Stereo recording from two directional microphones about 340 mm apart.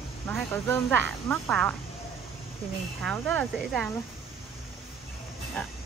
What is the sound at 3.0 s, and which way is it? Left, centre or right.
Speech, centre.